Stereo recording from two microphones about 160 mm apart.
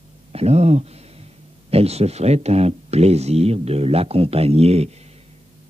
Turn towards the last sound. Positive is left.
turn(degrees=-40)  # may be behind; listen again after turning